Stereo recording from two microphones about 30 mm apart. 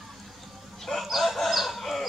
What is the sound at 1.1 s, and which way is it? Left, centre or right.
Chicken, centre.